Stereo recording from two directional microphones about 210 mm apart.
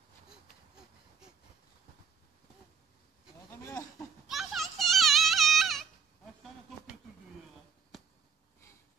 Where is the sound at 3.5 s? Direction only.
15° left (ahead or behind).